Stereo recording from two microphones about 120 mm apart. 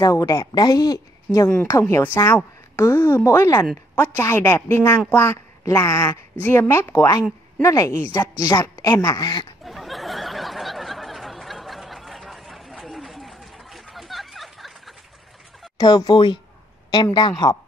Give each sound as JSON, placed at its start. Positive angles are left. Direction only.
{"t": 0.0, "sound": "a woman's voice", "side_deg": 30}
{"t": 9.7, "sound": "a sound", "side_deg": 0}
{"t": 15.8, "sound": "a woman's voice", "side_deg": 35}